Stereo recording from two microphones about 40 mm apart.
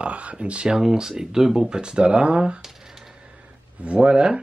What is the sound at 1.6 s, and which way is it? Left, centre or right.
Speech, right.